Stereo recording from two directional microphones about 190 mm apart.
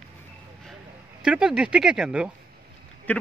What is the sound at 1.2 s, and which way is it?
Speech, 5° right (ahead or behind).